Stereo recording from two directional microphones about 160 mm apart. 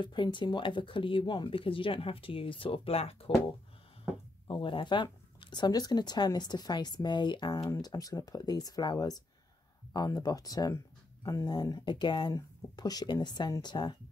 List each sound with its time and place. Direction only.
0.0 s speech: 30° left (ahead or behind)
4.5 s speech: 30° left (ahead or behind)